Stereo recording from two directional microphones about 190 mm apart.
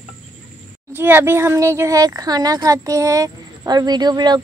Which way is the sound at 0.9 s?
10° right (ahead or behind).